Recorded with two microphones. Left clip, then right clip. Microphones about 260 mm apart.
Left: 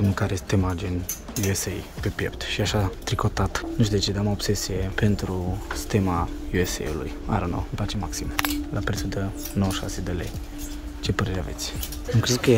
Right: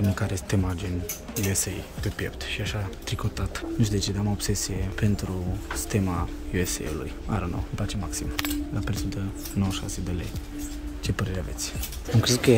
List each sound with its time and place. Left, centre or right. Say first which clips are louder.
0.1 s speech: left 3 dB; centre